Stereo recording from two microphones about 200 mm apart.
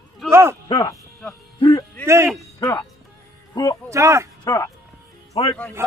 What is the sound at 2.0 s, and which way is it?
Speech, 15° right (ahead or behind).